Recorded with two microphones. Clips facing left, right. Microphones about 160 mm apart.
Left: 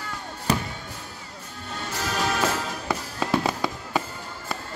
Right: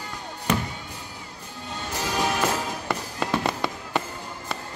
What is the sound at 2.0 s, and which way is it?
Music, 15° right (ahead or behind).